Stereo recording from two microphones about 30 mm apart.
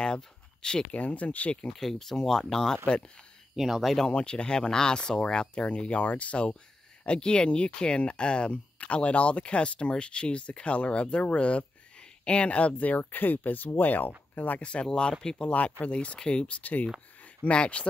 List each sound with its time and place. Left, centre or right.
0.0 s a sound: left
0.9 s speech: left
1.7 s speech: centre
3.5 s speech: centre
4.0 s speech: left
5.7 s speech: left
7.1 s speech: left
12.8 s speech: left
14.6 s speech: left
15.2 s speech: left
15.5 s speech: left
16.2 s speech: left
17.5 s speech: left